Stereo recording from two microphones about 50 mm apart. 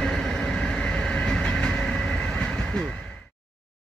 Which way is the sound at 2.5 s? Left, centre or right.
Centre.